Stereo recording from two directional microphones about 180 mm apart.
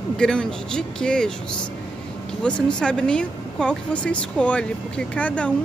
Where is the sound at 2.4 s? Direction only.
5° left (ahead or behind).